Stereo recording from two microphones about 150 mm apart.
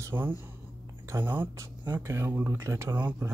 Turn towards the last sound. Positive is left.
turn(degrees=-10)  # may be behind; listen again after turning